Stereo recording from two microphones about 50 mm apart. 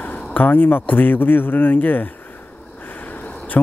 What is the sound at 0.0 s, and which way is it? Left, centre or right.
Speech, left.